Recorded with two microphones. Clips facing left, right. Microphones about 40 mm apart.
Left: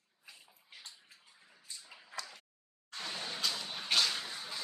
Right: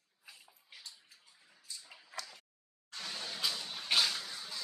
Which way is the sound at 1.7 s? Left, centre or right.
Left.